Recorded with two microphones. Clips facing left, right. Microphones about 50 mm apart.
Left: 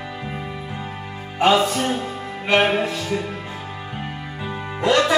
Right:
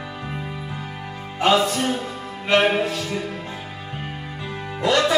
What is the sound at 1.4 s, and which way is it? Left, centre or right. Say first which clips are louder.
Music: left 1 dB; centre.